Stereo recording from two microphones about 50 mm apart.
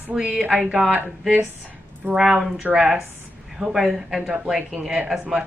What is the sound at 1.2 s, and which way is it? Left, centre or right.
Speech, centre.